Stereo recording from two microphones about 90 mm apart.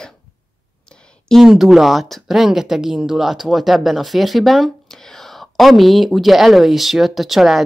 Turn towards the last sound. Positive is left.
turn(degrees=0)  # may be behind; listen again after turning